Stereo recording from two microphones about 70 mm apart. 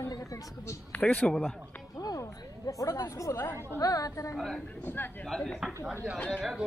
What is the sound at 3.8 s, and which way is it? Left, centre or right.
Speech, left.